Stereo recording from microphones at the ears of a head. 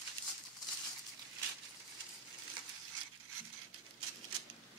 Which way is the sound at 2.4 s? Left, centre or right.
Right.